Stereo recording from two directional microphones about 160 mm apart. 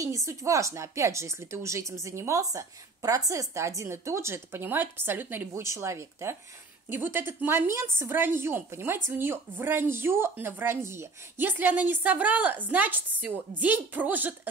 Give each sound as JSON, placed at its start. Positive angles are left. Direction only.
{"t": 0.0, "sound": "a woman's voice", "side_deg": -20}